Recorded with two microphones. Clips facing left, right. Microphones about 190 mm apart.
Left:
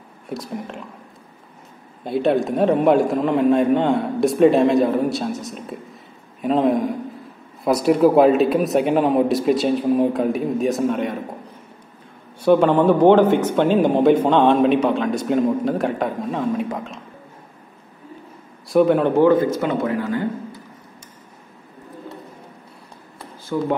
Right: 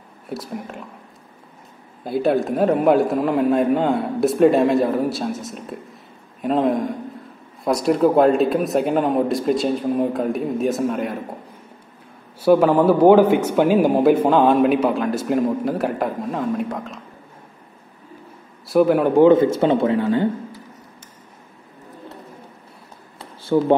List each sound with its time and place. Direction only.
0.3 s speech: 5° right (ahead or behind)
2.0 s speech: centre (ahead or behind)
12.4 s speech: 5° right (ahead or behind)
18.7 s speech: 5° right (ahead or behind)
19.2 s speech: 25° right (ahead or behind)
23.5 s speech: 40° right (ahead or behind)